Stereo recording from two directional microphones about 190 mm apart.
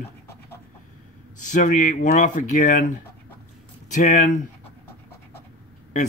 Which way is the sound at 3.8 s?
40° left (ahead or behind).